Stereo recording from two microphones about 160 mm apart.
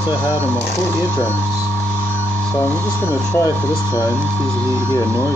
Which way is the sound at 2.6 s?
10° left (ahead or behind).